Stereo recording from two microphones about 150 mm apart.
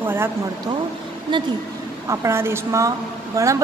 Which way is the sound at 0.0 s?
15° right (ahead or behind).